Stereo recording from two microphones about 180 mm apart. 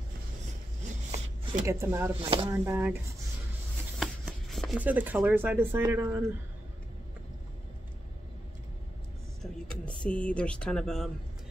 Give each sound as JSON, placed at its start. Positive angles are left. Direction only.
{"t": 0.8, "sound": "a sound", "side_deg": -35}
{"t": 1.7, "sound": "speech", "side_deg": -15}
{"t": 2.2, "sound": "speech", "side_deg": -30}
{"t": 2.5, "sound": "speech", "side_deg": -15}
{"t": 4.0, "sound": "speech", "side_deg": 0}
{"t": 9.7, "sound": "speech", "side_deg": 5}